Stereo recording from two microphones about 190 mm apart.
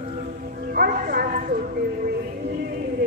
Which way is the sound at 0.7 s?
50° right (ahead or behind).